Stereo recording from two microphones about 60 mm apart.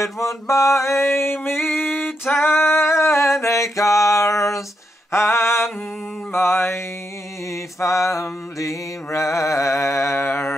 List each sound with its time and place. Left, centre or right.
0.0 s mantra: left
5.1 s mantra: left
7.5 s mantra: left